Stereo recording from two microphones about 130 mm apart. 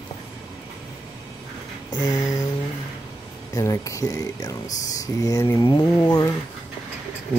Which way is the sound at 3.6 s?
25° left (ahead or behind).